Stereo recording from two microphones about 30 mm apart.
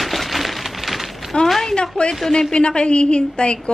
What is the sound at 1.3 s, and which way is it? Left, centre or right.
A woman's voice, left.